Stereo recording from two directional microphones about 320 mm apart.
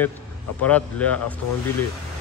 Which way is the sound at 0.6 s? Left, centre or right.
Centre.